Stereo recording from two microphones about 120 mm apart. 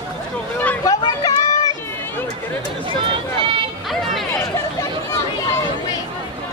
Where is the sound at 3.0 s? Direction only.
45° right (ahead or behind).